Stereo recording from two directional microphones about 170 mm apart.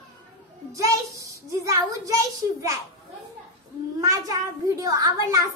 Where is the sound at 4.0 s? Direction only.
20° right (ahead or behind).